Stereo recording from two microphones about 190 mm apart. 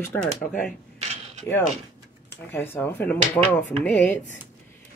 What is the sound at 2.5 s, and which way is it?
Speech, 10° left (ahead or behind).